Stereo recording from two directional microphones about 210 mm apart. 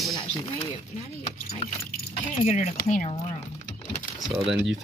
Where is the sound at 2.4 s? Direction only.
35° left (ahead or behind).